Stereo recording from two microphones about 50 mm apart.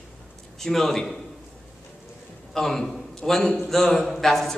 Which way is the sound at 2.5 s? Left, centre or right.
Centre.